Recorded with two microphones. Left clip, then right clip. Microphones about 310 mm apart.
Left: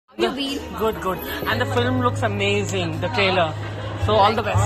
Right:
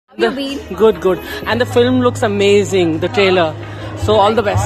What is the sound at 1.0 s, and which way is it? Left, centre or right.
Speech, centre.